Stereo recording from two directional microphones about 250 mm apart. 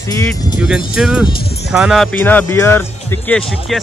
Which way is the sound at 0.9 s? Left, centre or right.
Centre.